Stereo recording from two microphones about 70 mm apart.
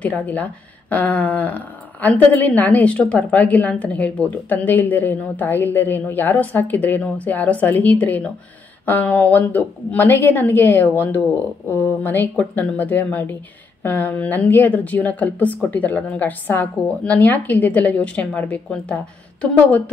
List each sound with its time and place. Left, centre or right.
0.0 s speech: left